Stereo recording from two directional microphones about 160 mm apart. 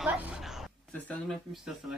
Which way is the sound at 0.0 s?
5° right (ahead or behind).